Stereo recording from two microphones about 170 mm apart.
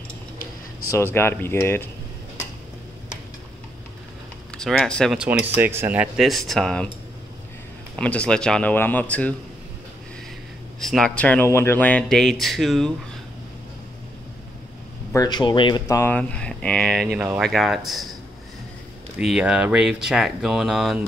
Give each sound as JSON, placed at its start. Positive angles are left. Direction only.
{"t": 0.8, "sound": "speech", "side_deg": 15}
{"t": 4.6, "sound": "speech", "side_deg": 0}
{"t": 7.9, "sound": "speech", "side_deg": 5}
{"t": 10.8, "sound": "speech", "side_deg": 0}
{"t": 15.1, "sound": "speech", "side_deg": 25}
{"t": 16.0, "sound": "speech", "side_deg": 10}
{"t": 19.1, "sound": "speech", "side_deg": -5}